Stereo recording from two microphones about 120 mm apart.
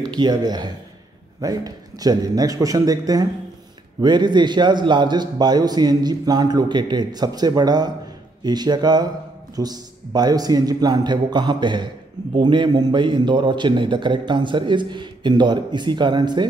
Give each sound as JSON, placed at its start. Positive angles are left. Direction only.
{"t": 0.0, "sound": "a man's voice", "side_deg": -35}